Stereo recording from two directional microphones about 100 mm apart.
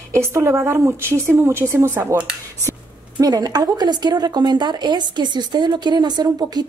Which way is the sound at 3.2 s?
40° right (ahead or behind).